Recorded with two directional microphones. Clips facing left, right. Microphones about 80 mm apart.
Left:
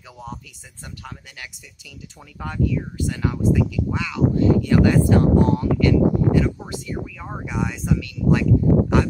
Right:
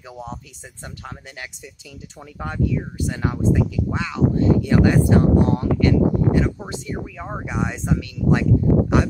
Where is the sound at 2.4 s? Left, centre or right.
Right.